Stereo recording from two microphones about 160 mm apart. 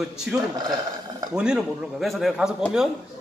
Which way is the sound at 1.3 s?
5° right (ahead or behind).